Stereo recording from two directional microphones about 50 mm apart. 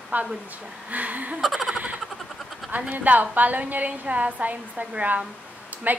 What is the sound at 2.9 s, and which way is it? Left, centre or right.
A woman's voice, right.